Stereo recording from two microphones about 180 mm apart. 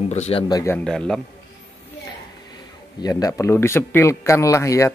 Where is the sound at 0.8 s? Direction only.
5° left (ahead or behind).